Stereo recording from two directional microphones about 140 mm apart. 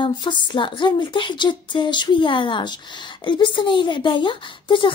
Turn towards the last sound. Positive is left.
turn(degrees=35)  # may be behind; listen again after turning